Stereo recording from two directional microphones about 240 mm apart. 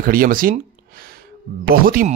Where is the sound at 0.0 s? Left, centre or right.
Right.